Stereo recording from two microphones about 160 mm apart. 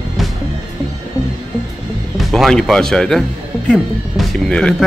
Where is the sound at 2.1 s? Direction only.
Centre (ahead or behind).